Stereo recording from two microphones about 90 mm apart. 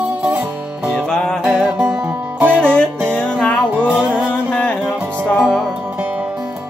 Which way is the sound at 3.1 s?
10° left (ahead or behind).